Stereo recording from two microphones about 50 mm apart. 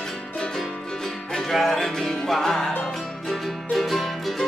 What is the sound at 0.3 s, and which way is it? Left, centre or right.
Music, centre.